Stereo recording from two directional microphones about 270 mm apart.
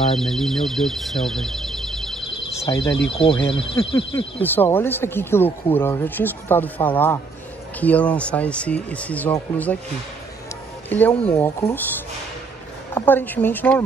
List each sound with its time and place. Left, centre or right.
0.2 s speech: centre
2.6 s speech: centre
10.9 s speech: centre
12.9 s speech: centre